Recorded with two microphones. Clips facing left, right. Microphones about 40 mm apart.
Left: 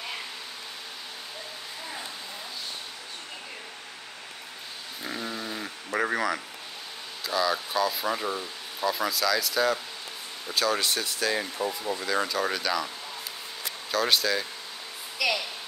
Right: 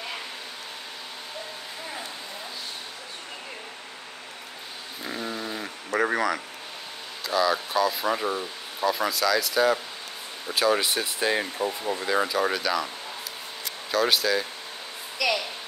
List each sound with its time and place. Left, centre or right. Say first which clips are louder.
5.0 s a sound: right 2 dB; centre
7.2 s speech: right 3 dB; centre; by 12.2 s right
12.2 s speech: right 3 dB; centre
13.9 s a woman's voice: right 2 dB; centre